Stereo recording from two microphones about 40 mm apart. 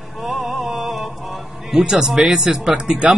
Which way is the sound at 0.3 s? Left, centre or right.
Centre.